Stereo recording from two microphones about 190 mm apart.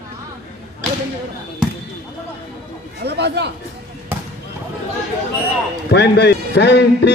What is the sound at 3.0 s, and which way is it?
Speech, 60° right (ahead or behind).